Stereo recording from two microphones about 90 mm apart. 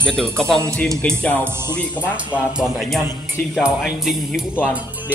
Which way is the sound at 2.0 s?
15° right (ahead or behind).